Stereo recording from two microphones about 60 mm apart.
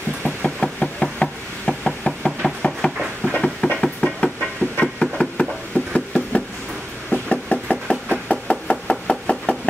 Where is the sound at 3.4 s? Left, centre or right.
Centre.